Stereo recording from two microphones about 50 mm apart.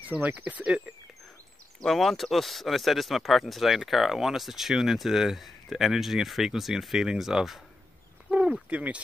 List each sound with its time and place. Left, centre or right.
0.1 s speech: right
1.9 s speech: centre
8.6 s speech: right